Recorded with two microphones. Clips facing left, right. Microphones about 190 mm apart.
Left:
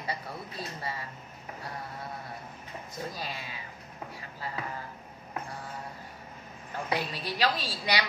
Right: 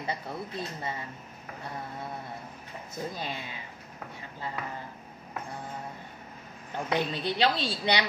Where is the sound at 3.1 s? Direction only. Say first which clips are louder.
Right 2 dB; 25° right (ahead or behind).